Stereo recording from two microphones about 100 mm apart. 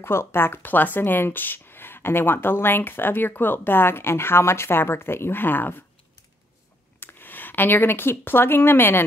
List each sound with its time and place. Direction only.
0.0 s speech: 25° left (ahead or behind)
7.0 s speech: 20° left (ahead or behind)